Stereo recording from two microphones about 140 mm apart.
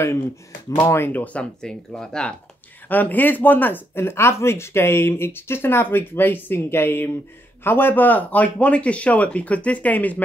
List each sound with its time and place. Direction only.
0.7 s speech: 20° left (ahead or behind)